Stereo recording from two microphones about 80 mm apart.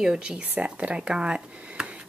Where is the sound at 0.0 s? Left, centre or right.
Centre.